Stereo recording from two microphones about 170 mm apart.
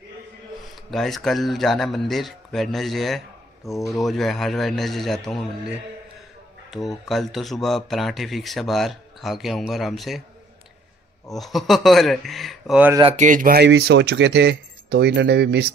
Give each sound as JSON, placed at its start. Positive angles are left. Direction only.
{"t": 0.7, "sound": "speech", "side_deg": 0}
{"t": 6.7, "sound": "speech", "side_deg": 0}
{"t": 11.2, "sound": "speech", "side_deg": 0}
{"t": 13.0, "sound": "speech", "side_deg": -40}
{"t": 13.6, "sound": "speech", "side_deg": -85}